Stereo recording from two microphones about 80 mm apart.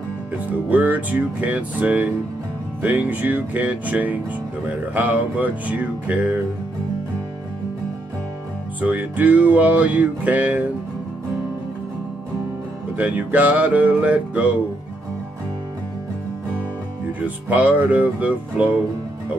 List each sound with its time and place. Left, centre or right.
0.5 s music: centre
8.8 s music: centre
12.9 s music: centre
17.2 s music: centre